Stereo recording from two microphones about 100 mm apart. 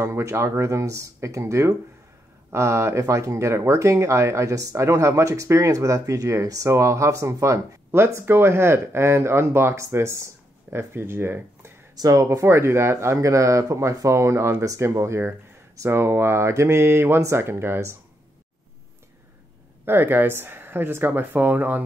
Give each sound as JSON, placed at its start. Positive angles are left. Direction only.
{"t": 0.0, "sound": "speech", "side_deg": -30}
{"t": 11.9, "sound": "speech", "side_deg": -35}
{"t": 19.8, "sound": "speech", "side_deg": -20}